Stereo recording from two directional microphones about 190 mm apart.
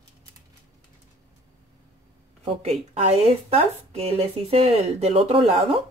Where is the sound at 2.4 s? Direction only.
35° right (ahead or behind).